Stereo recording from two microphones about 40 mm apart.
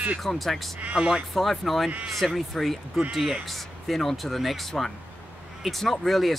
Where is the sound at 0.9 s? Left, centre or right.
Centre.